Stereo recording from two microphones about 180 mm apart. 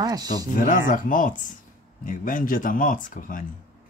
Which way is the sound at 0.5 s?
50° left (ahead or behind).